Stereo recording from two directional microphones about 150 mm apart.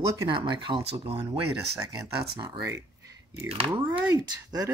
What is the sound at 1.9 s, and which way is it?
Speech, 25° right (ahead or behind).